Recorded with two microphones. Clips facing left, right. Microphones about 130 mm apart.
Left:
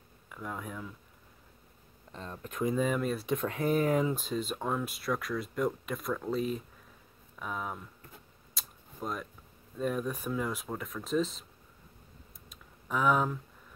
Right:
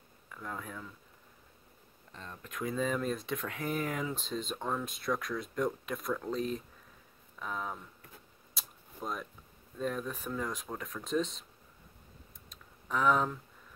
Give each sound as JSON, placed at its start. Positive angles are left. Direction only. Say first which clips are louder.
{"t": 0.3, "sound": "speech", "louder": "left 2 dB", "side_deg": 10}
{"t": 2.1, "sound": "speech", "louder": "left 4 dB", "side_deg": 30}
{"t": 2.6, "sound": "speech", "louder": "left 3 dB", "side_deg": 10}
{"t": 3.3, "sound": "speech", "louder": "left 6 dB", "side_deg": 30}
{"t": 4.1, "sound": "speech", "louder": "left 4 dB", "side_deg": 10}
{"t": 8.5, "sound": "a sound", "louder": "left 2 dB", "side_deg": 0}
{"t": 9.8, "sound": "speech", "louder": "left 3 dB", "side_deg": 10}
{"t": 12.4, "sound": "typing", "louder": "left 1 dB", "side_deg": 10}